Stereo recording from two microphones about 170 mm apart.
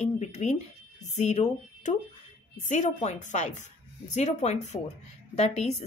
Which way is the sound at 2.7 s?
45° left (ahead or behind).